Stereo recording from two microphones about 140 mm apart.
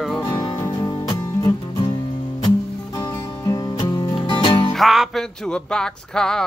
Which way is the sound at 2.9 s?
25° left (ahead or behind).